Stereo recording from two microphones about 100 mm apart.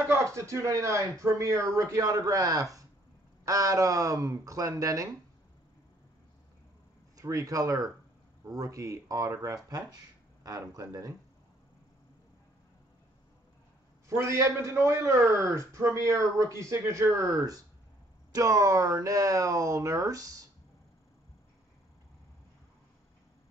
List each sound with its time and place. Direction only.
0.1 s a man's voice: 30° right (ahead or behind)
7.2 s a man's voice: 35° right (ahead or behind)
14.0 s a man's voice: 30° right (ahead or behind)